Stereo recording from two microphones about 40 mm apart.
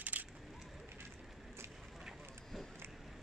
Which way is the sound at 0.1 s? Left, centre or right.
Right.